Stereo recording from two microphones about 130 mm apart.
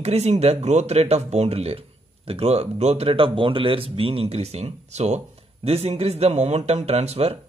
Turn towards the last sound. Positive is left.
turn(degrees=-55)  # may be behind; listen again after turning